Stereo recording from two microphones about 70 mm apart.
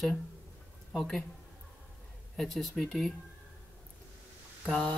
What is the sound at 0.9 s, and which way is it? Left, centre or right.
Speech, centre.